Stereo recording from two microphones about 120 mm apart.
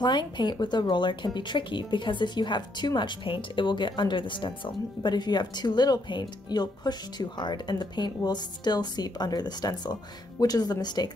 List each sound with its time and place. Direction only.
0.0 s speech: 40° left (ahead or behind)